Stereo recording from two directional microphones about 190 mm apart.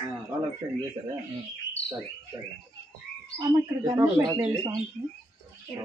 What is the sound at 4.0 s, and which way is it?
Speech, 15° right (ahead or behind).